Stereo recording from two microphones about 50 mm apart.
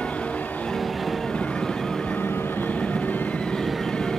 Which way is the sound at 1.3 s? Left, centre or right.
Left.